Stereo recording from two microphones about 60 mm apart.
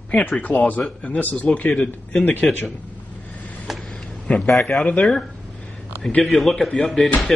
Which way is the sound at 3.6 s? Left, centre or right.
Centre.